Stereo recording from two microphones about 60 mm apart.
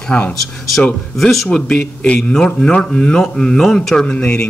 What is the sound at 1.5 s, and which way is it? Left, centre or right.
Speech, centre.